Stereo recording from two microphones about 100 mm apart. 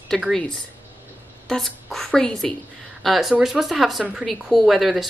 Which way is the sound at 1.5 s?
5° left (ahead or behind).